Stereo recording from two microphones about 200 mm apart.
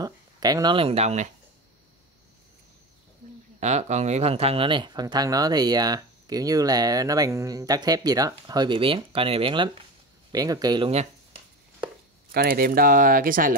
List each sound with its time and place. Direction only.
0.0 s speech: 20° right (ahead or behind); by 1.3 s 35° right (ahead or behind)
3.5 s speech: 35° right (ahead or behind)
12.3 s speech: 50° right (ahead or behind)